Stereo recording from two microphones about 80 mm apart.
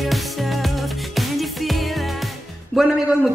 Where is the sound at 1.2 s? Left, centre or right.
Centre.